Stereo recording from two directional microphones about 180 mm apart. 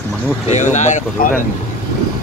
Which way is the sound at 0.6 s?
40° left (ahead or behind).